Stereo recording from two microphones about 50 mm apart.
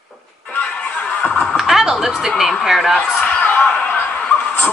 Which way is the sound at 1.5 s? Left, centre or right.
Centre.